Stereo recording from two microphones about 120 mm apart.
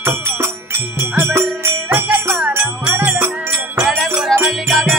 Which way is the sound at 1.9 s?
20° right (ahead or behind).